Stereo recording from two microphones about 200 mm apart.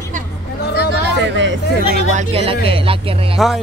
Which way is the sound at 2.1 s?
35° right (ahead or behind).